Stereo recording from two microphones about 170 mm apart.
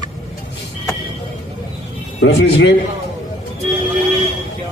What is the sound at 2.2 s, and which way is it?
Speech, 90° left.